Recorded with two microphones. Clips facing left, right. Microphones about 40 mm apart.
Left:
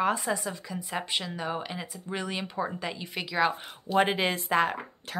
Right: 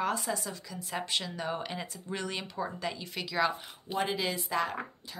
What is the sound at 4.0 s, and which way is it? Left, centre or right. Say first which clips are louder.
Speech: left 7 dB; left.